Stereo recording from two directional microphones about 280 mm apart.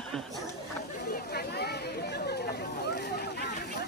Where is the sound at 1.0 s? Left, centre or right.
Left.